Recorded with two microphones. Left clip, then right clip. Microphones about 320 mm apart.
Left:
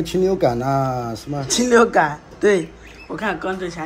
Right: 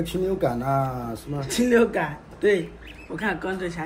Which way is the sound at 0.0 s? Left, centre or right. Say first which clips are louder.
Left 7 dB; left.